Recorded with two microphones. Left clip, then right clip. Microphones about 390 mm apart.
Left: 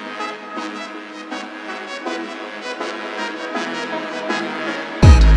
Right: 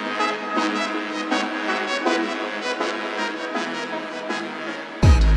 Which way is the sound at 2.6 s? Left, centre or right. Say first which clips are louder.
Right 1 dB; centre.